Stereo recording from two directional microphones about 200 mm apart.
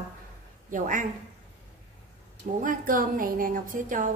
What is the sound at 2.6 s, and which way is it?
A woman's voice, 40° right (ahead or behind).